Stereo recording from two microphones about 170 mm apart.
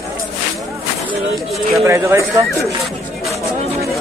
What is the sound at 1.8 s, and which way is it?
Speech, 15° right (ahead or behind).